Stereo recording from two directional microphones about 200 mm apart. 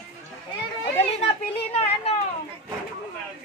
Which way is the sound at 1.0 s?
30° left (ahead or behind).